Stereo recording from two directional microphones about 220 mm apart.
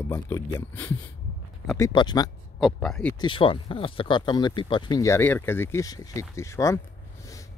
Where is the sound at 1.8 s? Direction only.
20° left (ahead or behind).